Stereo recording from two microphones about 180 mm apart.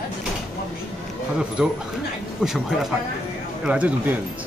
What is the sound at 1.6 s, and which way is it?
Speech, 5° right (ahead or behind).